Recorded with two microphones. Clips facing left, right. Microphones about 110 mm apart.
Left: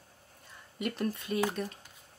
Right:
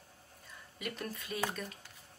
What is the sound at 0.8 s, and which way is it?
Speech, 30° left (ahead or behind).